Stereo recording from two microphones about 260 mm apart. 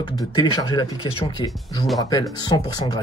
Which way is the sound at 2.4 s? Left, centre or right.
Centre.